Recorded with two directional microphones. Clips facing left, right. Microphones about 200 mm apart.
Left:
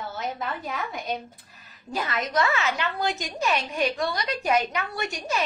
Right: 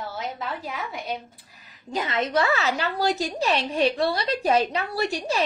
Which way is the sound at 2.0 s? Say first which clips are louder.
Right 2 dB; 25° right (ahead or behind).